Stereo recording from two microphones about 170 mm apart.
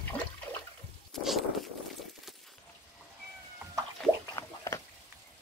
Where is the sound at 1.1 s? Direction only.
Centre (ahead or behind).